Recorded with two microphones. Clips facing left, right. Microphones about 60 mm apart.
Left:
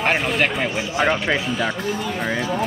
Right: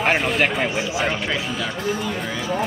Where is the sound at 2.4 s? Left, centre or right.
Centre.